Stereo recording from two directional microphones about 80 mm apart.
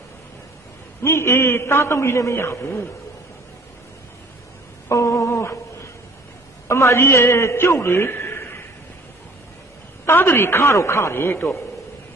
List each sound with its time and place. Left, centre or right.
1.0 s a man's voice: left
4.8 s humming: left
6.7 s a man's voice: left
10.0 s a man's voice: left